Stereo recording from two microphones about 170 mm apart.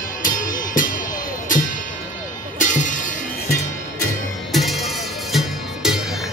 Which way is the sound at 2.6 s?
50° left (ahead or behind).